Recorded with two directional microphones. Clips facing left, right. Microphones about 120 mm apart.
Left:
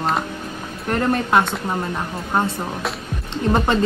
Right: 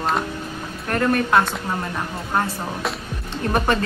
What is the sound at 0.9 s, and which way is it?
Speech, 25° left (ahead or behind).